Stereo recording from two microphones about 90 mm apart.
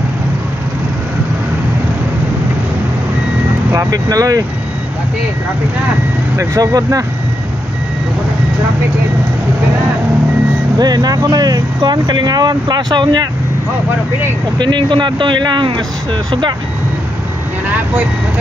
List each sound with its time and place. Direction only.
3.7 s speech: 40° right (ahead or behind)
6.3 s speech: 40° right (ahead or behind)
10.8 s speech: 45° right (ahead or behind)
14.6 s speech: 60° right (ahead or behind)
17.6 s speech: 15° right (ahead or behind)